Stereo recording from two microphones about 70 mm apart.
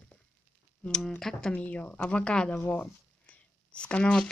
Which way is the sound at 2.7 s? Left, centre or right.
Centre.